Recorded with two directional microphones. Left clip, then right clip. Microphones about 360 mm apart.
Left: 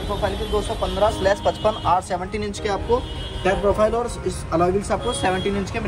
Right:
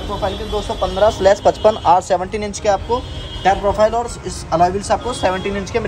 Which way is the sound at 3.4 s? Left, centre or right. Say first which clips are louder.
Right 5 dB; right.